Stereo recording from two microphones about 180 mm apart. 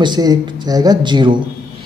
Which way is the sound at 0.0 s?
20° right (ahead or behind).